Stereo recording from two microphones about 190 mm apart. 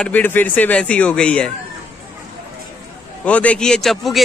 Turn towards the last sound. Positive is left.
turn(degrees=0)  # may be behind; listen again after turning